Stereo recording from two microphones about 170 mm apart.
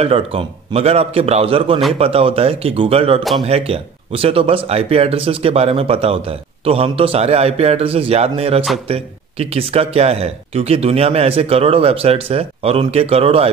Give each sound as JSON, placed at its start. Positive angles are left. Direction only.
{"t": 0.0, "sound": "speech", "side_deg": -35}